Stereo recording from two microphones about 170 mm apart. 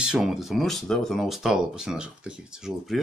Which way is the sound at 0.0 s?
5° right (ahead or behind).